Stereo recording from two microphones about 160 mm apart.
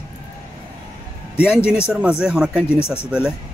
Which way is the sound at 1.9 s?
5° right (ahead or behind).